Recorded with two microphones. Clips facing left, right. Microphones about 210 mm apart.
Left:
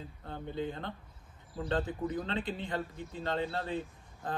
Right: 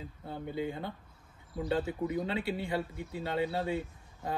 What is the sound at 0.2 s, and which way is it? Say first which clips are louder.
A man's voice: right 1 dB; 10° right (ahead or behind).